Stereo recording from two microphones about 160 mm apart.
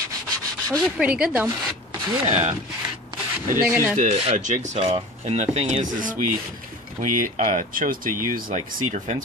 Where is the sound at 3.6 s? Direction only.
10° right (ahead or behind).